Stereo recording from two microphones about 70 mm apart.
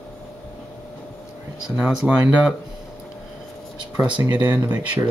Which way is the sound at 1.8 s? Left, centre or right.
Centre.